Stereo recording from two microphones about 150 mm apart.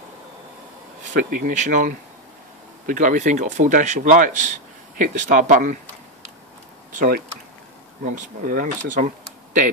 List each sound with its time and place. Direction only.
1.4 s speech: 55° right (ahead or behind)
6.9 s speech: 65° right (ahead or behind)